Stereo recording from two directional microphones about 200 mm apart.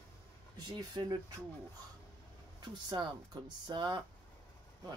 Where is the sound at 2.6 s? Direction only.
20° right (ahead or behind).